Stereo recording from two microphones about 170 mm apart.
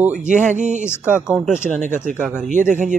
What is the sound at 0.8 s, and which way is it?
Speech, 15° left (ahead or behind).